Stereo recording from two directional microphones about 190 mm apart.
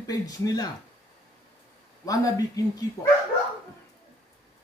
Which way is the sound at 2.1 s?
20° left (ahead or behind).